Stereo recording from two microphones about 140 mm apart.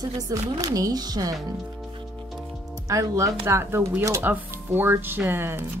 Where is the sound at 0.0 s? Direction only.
25° right (ahead or behind).